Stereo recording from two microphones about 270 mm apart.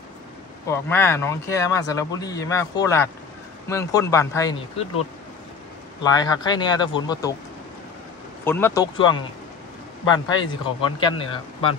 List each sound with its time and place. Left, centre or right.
0.7 s speech: centre
6.0 s speech: centre
8.5 s speech: centre